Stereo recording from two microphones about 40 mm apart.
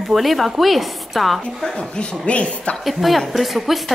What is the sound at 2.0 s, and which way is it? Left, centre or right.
Speech, left.